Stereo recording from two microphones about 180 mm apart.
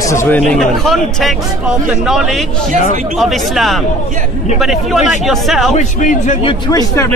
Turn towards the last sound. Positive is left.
turn(degrees=20)  # may be behind; listen again after turning